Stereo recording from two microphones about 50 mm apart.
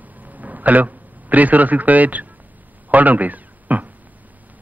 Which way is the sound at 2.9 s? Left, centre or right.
Right.